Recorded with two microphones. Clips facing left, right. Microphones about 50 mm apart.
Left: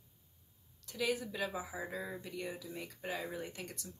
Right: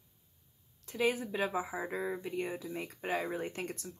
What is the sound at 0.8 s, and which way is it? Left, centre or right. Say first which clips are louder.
Speech: right 4 dB; right.